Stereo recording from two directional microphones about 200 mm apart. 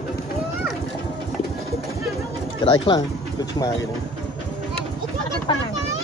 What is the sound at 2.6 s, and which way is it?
Speech, 25° left (ahead or behind).